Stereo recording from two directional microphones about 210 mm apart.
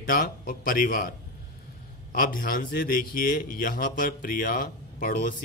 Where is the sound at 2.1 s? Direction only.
40° left (ahead or behind).